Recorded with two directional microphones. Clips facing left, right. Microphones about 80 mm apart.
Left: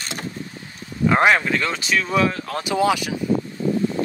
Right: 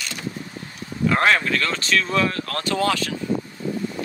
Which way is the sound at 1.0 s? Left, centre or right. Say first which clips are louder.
Left 2 dB; centre.